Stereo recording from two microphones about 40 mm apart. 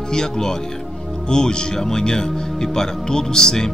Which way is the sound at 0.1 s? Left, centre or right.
Centre.